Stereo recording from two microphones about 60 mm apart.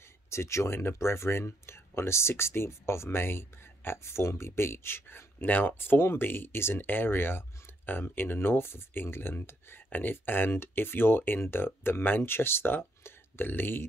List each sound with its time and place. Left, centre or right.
0.3 s speech: left